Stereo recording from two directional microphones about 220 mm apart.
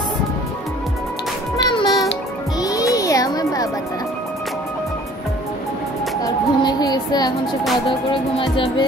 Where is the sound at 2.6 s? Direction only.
15° left (ahead or behind).